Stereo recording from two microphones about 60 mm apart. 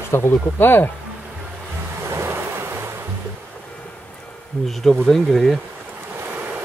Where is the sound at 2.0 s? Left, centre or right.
Right.